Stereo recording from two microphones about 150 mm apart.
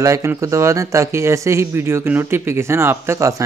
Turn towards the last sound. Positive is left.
turn(degrees=-20)  # may be behind; listen again after turning